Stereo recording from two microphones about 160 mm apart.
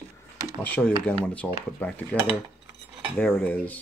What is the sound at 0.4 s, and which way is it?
Speech, 10° left (ahead or behind).